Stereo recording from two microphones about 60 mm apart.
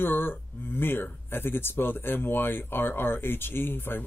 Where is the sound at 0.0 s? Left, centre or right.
Left.